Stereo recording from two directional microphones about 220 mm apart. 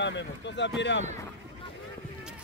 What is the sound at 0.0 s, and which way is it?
Speech, 55° left (ahead or behind).